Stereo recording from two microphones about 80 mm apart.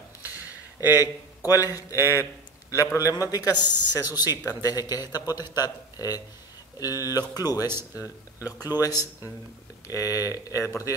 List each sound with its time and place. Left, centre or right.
0.2 s a sound: centre
1.5 s a man's voice: left
8.0 s a man's voice: left